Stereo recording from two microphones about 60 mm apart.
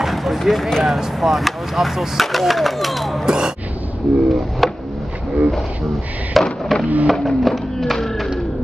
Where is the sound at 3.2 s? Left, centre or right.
Centre.